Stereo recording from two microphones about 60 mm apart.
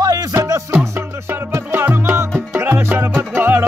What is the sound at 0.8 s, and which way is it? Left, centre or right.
Music, right.